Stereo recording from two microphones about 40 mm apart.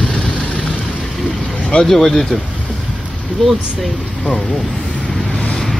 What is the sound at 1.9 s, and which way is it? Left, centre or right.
Speech, centre.